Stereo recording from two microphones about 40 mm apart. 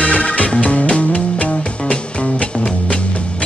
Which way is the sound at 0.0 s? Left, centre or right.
Left.